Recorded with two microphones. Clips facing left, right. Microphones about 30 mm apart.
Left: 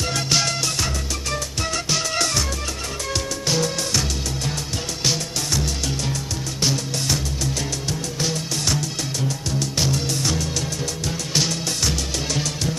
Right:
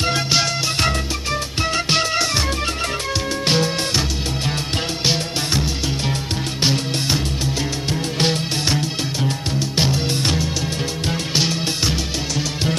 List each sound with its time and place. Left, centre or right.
0.0 s music: right
3.4 s music: right
5.0 s music: right
6.6 s music: right
9.6 s music: right
11.3 s music: right